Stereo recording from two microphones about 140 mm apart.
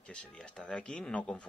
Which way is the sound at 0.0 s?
10° left (ahead or behind).